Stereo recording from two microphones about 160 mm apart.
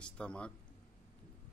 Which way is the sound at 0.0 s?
5° left (ahead or behind).